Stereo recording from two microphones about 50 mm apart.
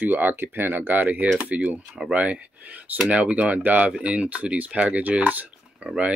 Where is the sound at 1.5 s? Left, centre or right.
Right.